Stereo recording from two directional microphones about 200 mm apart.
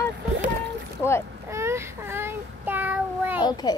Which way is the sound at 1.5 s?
15° right (ahead or behind).